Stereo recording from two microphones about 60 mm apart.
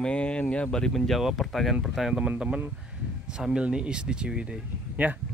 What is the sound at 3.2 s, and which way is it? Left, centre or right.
Speech, centre.